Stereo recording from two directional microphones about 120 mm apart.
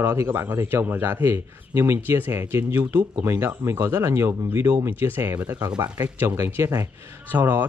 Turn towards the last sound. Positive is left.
turn(degrees=-15)  # may be behind; listen again after turning